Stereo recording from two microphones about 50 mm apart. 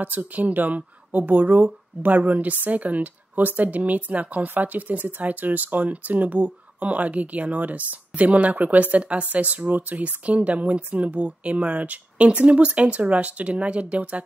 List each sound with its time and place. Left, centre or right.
0.0 s speech: right